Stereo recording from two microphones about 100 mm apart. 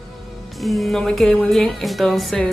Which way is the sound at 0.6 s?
Centre (ahead or behind).